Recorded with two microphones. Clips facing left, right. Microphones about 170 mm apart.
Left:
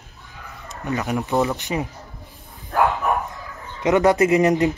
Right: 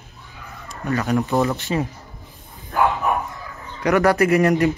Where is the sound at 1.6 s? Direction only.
15° left (ahead or behind).